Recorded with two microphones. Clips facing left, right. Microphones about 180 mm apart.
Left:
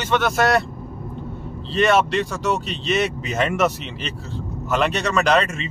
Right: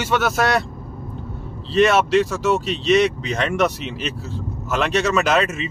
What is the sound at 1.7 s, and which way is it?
Speech, centre (ahead or behind).